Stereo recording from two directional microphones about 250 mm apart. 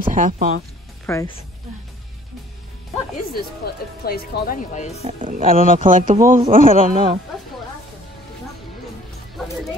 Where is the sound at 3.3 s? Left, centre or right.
Left.